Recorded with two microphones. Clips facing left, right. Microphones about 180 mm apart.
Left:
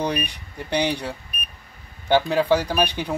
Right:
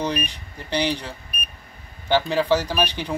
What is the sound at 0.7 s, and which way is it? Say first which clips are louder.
A man's voice: left 1 dB; 15° left (ahead or behind).